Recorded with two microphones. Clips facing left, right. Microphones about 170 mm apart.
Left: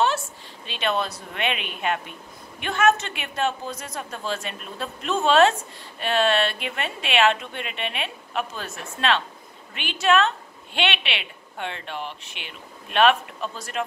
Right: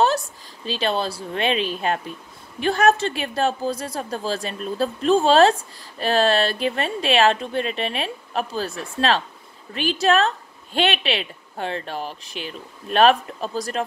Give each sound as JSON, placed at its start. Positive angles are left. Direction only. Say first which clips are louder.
{"t": 0.7, "sound": "a woman's voice", "louder": "right 3 dB", "side_deg": -35}